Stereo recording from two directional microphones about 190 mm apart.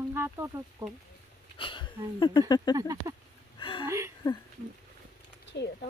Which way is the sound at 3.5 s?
25° left (ahead or behind).